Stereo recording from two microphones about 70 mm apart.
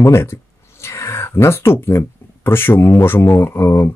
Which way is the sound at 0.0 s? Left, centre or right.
Left.